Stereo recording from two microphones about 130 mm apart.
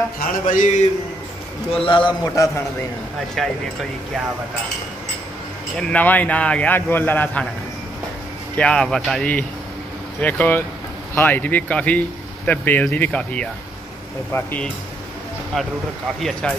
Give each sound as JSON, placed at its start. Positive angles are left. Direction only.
{"t": 0.2, "sound": "a sound", "side_deg": 85}
{"t": 1.7, "sound": "speech", "side_deg": 40}
{"t": 2.3, "sound": "a man's voice", "side_deg": 25}
{"t": 3.4, "sound": "speech", "side_deg": 0}
{"t": 5.8, "sound": "a man's voice", "side_deg": 10}
{"t": 8.5, "sound": "a man's voice", "side_deg": 5}
{"t": 15.5, "sound": "speech", "side_deg": 0}